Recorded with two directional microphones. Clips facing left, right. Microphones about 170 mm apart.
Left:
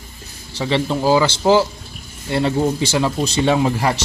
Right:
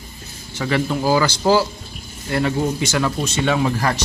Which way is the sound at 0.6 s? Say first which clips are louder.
Left 1 dB; 25° left (ahead or behind).